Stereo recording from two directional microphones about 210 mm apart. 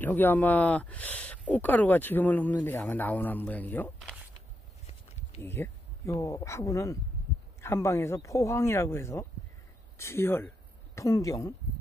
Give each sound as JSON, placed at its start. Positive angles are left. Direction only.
{"t": 0.0, "sound": "speech", "side_deg": 10}
{"t": 5.4, "sound": "speech", "side_deg": 10}